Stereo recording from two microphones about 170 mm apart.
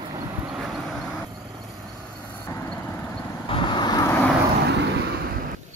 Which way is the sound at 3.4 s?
30° left (ahead or behind).